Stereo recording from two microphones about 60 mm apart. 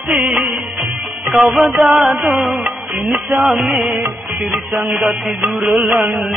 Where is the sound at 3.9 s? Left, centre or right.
Centre.